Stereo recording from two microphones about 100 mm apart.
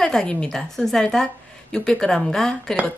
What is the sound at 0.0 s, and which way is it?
A woman's voice, 5° left (ahead or behind).